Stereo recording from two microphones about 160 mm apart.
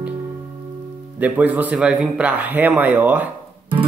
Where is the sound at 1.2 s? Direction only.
10° right (ahead or behind).